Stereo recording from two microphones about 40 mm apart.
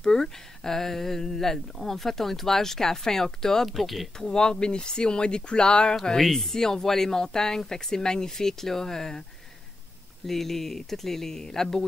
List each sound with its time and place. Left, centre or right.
0.0 s speech: centre
3.6 s speech: centre
4.2 s speech: centre
6.1 s speech: centre
10.2 s speech: centre